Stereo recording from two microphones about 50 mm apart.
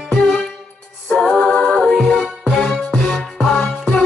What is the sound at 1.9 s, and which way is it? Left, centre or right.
Music, centre.